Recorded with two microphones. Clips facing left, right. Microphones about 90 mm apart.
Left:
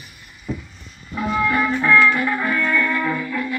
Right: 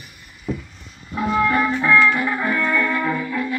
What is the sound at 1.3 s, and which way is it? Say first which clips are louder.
Music: right 1 dB; 30° right (ahead or behind).